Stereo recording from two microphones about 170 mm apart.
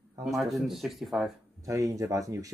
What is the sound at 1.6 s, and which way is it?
Speech, 20° right (ahead or behind).